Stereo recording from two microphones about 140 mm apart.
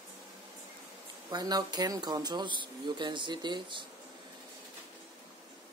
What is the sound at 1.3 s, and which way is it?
Speech, 30° right (ahead or behind).